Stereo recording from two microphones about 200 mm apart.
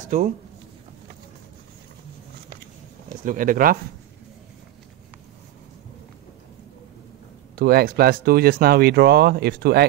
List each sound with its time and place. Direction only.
3.3 s speech: 45° right (ahead or behind)
7.5 s speech: 50° right (ahead or behind)